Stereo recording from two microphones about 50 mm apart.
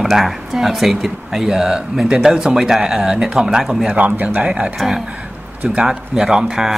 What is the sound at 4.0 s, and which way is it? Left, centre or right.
Speech, right.